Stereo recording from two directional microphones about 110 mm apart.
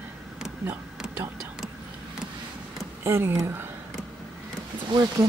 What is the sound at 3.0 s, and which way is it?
Speech, 25° right (ahead or behind).